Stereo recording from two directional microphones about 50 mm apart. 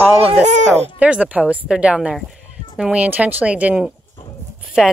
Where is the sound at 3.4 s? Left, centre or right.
Right.